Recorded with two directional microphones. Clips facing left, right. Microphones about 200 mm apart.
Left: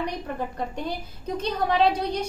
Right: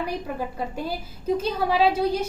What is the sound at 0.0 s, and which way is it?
A woman's voice, 5° right (ahead or behind).